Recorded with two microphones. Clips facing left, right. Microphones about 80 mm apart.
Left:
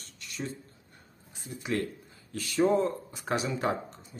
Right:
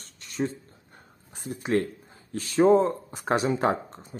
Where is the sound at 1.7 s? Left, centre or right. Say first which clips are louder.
Right 6 dB; right.